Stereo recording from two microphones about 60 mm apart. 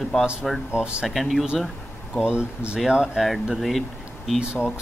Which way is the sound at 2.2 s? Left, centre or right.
Centre.